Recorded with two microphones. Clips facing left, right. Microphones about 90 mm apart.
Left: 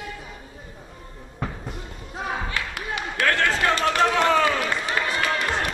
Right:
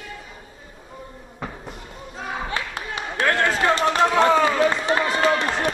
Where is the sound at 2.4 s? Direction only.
25° right (ahead or behind).